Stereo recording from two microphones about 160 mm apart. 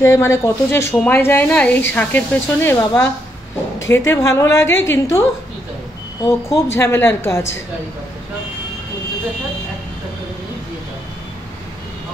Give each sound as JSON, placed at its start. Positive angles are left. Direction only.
{"t": 0.0, "sound": "a woman's voice", "side_deg": 20}
{"t": 6.5, "sound": "a woman's voice", "side_deg": 15}